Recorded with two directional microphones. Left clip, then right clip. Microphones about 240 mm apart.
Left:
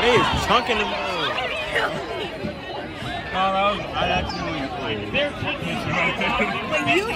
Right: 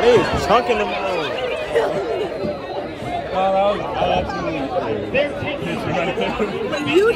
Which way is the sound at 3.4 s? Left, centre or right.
Left.